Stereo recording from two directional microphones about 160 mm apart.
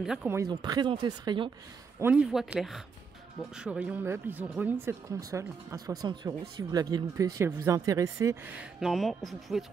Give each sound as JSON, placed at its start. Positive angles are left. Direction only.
{"t": 0.0, "sound": "speech", "side_deg": -5}
{"t": 0.3, "sound": "speech", "side_deg": -25}
{"t": 2.0, "sound": "speech", "side_deg": -10}
{"t": 8.7, "sound": "speech", "side_deg": 0}